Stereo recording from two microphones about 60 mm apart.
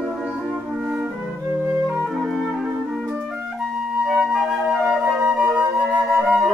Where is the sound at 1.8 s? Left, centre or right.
Centre.